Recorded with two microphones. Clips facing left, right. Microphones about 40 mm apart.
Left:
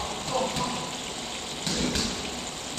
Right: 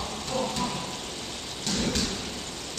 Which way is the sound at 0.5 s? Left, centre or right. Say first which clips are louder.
Even; centre.